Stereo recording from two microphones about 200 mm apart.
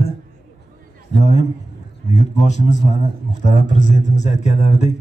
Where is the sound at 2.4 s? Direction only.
35° left (ahead or behind).